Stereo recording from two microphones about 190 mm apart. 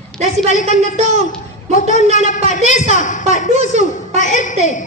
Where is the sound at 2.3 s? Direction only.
40° left (ahead or behind).